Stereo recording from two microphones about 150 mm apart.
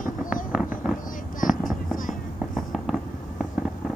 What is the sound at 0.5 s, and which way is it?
Fireworks, 5° right (ahead or behind).